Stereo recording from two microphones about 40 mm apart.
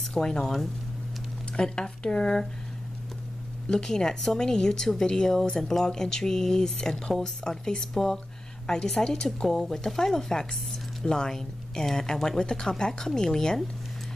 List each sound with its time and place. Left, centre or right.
0.0 s speech: centre
1.6 s speech: left
3.6 s a woman's voice: centre